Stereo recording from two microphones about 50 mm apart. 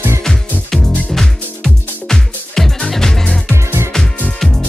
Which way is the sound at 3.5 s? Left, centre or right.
Right.